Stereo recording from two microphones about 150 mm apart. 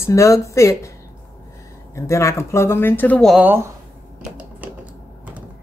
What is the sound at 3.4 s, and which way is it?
Speech, 15° right (ahead or behind).